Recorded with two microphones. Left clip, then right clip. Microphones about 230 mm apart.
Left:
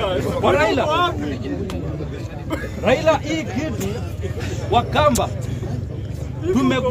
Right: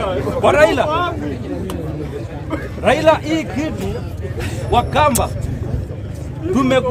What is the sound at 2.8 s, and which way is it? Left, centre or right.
A man's voice, centre.